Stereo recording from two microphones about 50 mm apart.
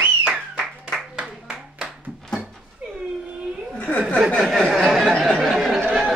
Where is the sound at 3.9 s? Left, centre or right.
Left.